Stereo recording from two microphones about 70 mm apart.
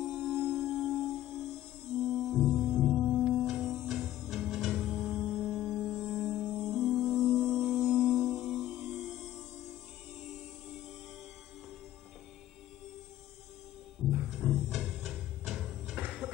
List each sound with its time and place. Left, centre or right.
0.2 s music: centre
14.3 s music: centre
16.0 s music: centre